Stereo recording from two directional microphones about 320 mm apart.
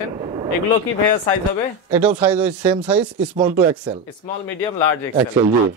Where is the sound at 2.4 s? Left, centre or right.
Centre.